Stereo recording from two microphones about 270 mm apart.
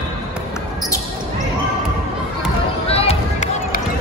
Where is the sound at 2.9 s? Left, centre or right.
Left.